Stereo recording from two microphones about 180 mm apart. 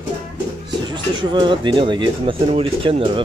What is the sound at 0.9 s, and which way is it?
Speech, 25° right (ahead or behind).